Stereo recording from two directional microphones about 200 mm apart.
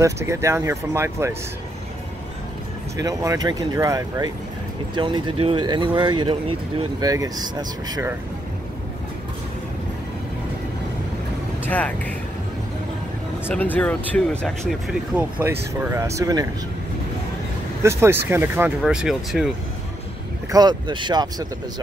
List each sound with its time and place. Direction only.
0.0 s speech: 15° right (ahead or behind)
3.0 s speech: 15° right (ahead or behind)
11.6 s speech: 5° left (ahead or behind)
13.5 s speech: 10° left (ahead or behind); by 16.4 s 15° right (ahead or behind)
17.8 s speech: 10° right (ahead or behind)
20.5 s speech: 20° right (ahead or behind)